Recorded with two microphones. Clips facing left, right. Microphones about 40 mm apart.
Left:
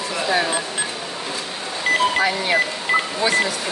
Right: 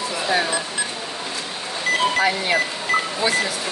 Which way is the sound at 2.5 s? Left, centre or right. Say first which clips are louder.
Left 1 dB; centre.